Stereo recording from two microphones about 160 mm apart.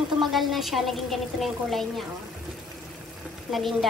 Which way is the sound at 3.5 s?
Centre (ahead or behind).